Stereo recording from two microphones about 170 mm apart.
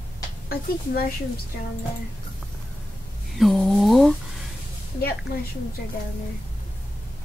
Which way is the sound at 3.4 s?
Centre (ahead or behind).